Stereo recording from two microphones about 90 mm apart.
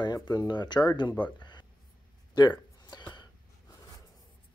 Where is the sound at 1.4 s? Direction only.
55° left (ahead or behind).